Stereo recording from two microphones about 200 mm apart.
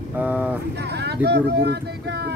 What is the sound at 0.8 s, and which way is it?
Speech, 55° right (ahead or behind).